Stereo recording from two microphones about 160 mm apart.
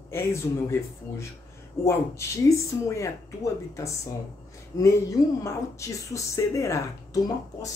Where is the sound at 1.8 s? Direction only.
15° left (ahead or behind).